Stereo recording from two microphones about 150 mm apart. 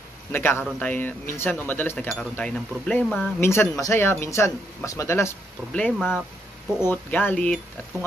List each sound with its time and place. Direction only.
0.3 s speech: 15° left (ahead or behind)
3.4 s speech: 20° left (ahead or behind)
5.9 s speech: 5° right (ahead or behind)
6.9 s speech: 10° left (ahead or behind)